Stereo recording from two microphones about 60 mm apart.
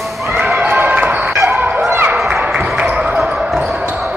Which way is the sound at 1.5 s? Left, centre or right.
Right.